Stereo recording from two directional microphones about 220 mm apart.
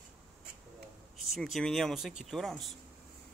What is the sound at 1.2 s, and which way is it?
Speech, centre (ahead or behind).